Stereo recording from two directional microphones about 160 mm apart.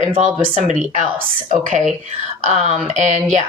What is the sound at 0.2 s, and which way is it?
Speech, 50° right (ahead or behind).